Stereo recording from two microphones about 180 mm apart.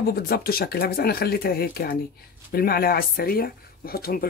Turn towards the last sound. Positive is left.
turn(degrees=55)  # may be behind; listen again after turning